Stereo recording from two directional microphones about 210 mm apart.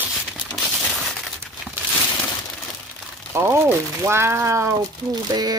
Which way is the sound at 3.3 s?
10° right (ahead or behind).